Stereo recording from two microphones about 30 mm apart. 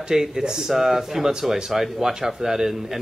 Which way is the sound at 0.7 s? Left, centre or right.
Centre.